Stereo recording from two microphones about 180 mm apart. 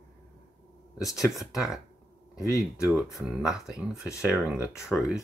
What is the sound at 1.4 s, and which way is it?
Speech, centre (ahead or behind).